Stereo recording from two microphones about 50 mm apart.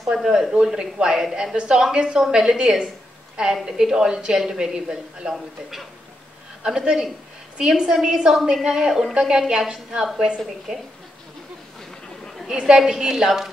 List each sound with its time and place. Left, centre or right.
0.2 s a man's voice: centre
6.6 s a man's voice: centre
12.4 s a man's voice: centre